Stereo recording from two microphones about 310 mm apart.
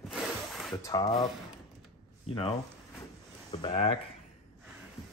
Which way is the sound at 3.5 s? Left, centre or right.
Centre.